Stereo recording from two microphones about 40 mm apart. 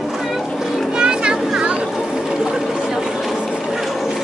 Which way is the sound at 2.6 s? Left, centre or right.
Centre.